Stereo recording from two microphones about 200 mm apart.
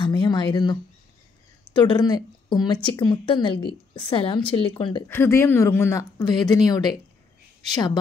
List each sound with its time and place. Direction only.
0.0 s a sound: 20° left (ahead or behind)
1.7 s speech: 20° left (ahead or behind)
5.0 s speech: 10° left (ahead or behind)